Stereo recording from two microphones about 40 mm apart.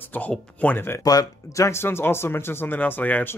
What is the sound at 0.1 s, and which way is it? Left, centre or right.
Speech, left.